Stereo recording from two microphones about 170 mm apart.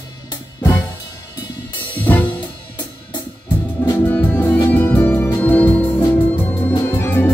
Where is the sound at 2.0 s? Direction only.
10° left (ahead or behind).